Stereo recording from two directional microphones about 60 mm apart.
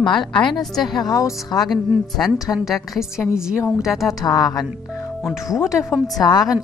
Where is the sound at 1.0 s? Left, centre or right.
Left.